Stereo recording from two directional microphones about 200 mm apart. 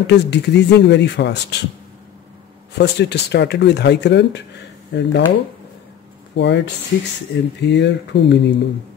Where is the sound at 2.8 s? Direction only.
55° left (ahead or behind).